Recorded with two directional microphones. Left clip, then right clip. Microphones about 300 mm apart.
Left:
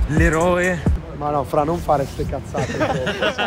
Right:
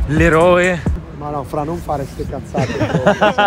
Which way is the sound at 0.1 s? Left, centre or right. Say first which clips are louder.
Right 6 dB; centre.